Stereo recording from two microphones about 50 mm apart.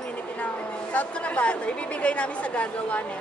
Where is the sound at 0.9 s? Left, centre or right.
Left.